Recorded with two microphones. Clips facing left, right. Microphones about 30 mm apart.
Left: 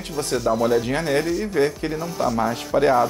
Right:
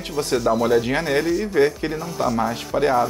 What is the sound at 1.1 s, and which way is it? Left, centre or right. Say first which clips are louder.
Speech: right 3 dB; centre.